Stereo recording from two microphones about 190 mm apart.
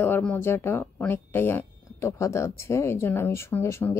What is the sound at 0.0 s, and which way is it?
Speech, 10° left (ahead or behind).